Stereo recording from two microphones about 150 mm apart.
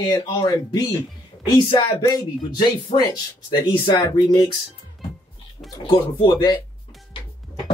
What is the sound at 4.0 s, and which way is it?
Speech, 20° left (ahead or behind).